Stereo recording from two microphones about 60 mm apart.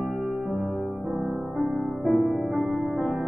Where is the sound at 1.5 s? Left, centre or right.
Centre.